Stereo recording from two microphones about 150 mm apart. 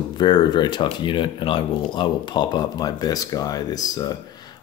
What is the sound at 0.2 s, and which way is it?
Speech, 30° left (ahead or behind).